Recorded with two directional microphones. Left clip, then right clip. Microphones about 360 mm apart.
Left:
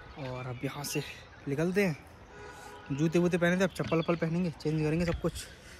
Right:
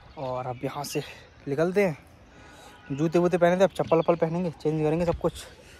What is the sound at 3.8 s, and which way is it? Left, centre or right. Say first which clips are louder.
Speech: right 8 dB; right.